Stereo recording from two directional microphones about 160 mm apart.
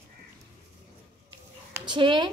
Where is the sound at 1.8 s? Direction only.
30° right (ahead or behind).